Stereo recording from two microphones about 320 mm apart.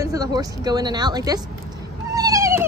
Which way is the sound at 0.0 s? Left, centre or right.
Centre.